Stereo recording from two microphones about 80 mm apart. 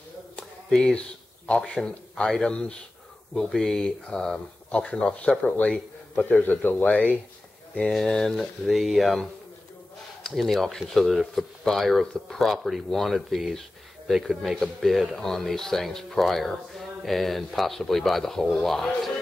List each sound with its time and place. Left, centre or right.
0.4 s a sound: centre
0.9 s speech: centre
7.7 s speech: centre